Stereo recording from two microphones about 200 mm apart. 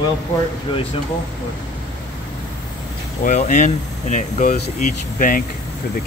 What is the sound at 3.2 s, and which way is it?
Speech, 40° left (ahead or behind).